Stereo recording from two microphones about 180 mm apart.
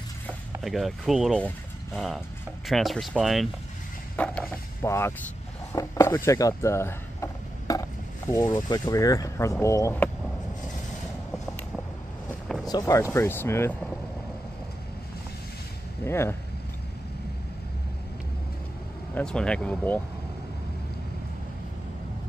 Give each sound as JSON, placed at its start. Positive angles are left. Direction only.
{"t": 0.6, "sound": "speech", "side_deg": 0}
{"t": 4.2, "sound": "speech", "side_deg": 10}
{"t": 12.6, "sound": "speech", "side_deg": 20}
{"t": 16.0, "sound": "speech", "side_deg": 15}
{"t": 19.1, "sound": "speech", "side_deg": 5}